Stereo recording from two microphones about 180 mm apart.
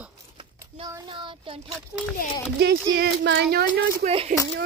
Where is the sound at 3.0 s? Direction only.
70° right (ahead or behind).